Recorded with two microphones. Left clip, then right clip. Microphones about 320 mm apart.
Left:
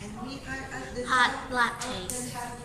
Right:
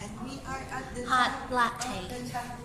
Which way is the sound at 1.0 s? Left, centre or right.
Centre.